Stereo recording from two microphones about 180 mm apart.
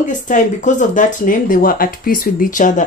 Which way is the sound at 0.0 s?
45° left (ahead or behind).